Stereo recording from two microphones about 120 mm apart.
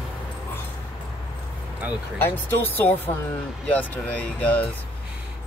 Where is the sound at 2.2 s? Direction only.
20° left (ahead or behind).